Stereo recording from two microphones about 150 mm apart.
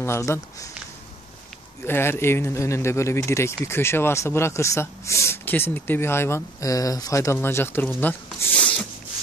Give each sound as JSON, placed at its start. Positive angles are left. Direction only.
{"t": 0.0, "sound": "speech", "side_deg": 20}
{"t": 1.9, "sound": "speech", "side_deg": 15}
{"t": 8.0, "sound": "a sound", "side_deg": 15}